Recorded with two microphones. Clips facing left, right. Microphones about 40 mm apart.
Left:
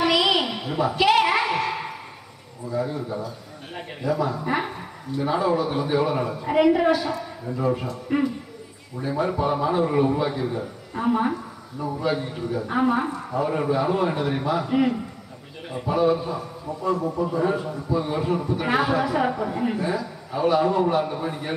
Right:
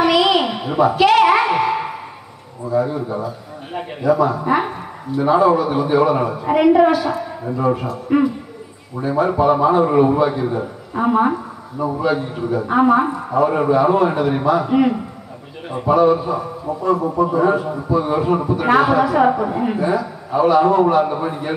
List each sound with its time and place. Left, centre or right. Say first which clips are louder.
0.0 s a sound: right 6 dB; centre
2.7 s a man's voice: right 7 dB; centre
18.7 s a man's voice: right 8 dB; centre